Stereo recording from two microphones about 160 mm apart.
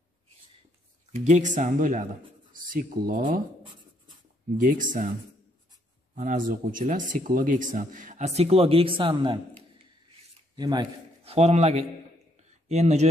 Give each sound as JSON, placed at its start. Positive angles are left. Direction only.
{"t": 1.1, "sound": "speech", "side_deg": -50}
{"t": 4.6, "sound": "speech", "side_deg": -55}
{"t": 6.1, "sound": "speech", "side_deg": -60}
{"t": 10.5, "sound": "speech", "side_deg": -25}
{"t": 11.2, "sound": "a man's voice", "side_deg": -40}